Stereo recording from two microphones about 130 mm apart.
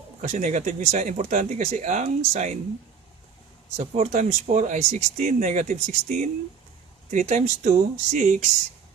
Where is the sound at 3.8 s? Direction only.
60° right (ahead or behind); by 8.5 s 80° right.